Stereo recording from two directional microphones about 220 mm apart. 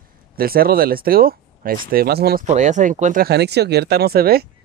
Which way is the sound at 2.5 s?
35° right (ahead or behind).